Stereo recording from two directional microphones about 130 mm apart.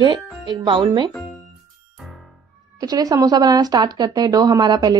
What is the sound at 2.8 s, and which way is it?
Speech, 30° right (ahead or behind).